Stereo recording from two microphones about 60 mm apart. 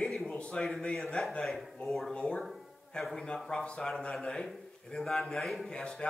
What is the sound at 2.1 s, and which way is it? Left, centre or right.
Speech, centre.